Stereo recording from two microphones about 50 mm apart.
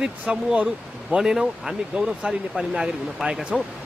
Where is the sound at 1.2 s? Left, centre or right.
Centre.